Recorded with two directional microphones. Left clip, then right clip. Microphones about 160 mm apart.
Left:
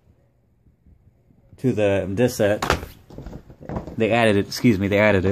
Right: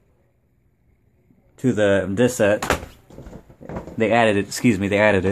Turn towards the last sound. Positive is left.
turn(degrees=5)  # may be behind; listen again after turning